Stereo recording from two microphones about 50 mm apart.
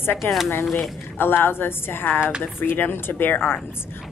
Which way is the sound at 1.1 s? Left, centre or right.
Left.